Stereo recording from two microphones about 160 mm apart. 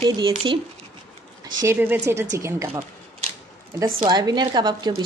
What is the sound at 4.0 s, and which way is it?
A woman's voice, 25° right (ahead or behind).